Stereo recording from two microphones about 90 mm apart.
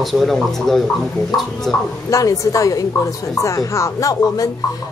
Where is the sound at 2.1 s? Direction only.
40° left (ahead or behind).